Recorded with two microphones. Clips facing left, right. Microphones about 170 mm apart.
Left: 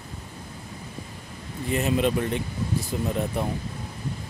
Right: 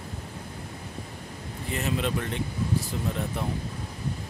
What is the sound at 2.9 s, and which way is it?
Speech, 15° left (ahead or behind).